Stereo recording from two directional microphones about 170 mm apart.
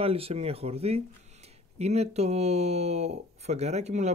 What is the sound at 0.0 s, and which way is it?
Speech, 35° right (ahead or behind).